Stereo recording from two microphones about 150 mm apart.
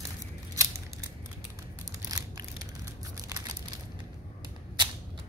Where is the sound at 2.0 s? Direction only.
25° right (ahead or behind).